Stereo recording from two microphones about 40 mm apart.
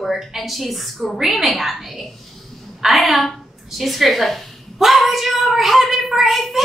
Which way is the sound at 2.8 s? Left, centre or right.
Centre.